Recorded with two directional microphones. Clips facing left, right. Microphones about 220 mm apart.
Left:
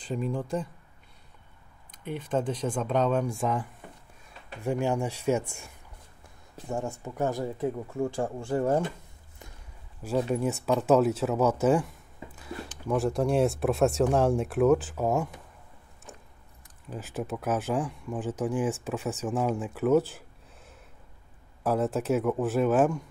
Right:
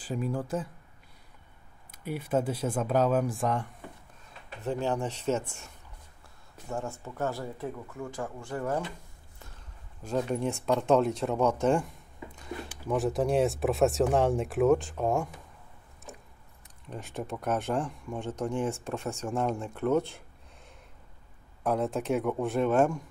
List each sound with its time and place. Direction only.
0.0 s speech: 5° right (ahead or behind)
1.9 s speech: 10° right (ahead or behind)
4.6 s speech: 10° left (ahead or behind)
6.7 s speech: 15° left (ahead or behind)
10.0 s speech: 5° left (ahead or behind)
16.9 s speech: 5° left (ahead or behind)